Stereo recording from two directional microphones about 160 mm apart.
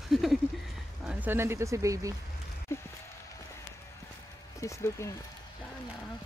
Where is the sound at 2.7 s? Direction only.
15° left (ahead or behind).